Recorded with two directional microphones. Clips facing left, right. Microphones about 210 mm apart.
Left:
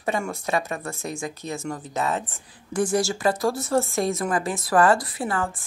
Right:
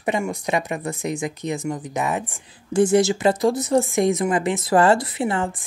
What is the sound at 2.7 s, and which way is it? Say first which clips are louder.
Speech: right 6 dB; 25° right (ahead or behind).